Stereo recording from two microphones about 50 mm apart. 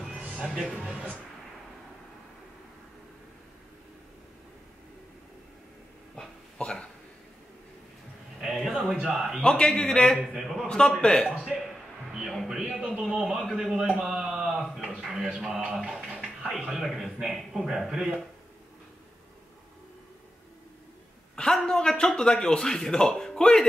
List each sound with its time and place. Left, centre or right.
0.7 s speech: centre
6.1 s a sound: centre
8.4 s a sound: centre
9.1 s speech: centre
9.4 s a man's voice: centre
10.1 s a man's voice: centre
10.7 s a man's voice: centre
12.1 s a sound: centre
12.4 s a man's voice: centre
15.0 s a sound: centre
15.3 s speech: centre
15.6 s speech: centre
21.4 s a man's voice: centre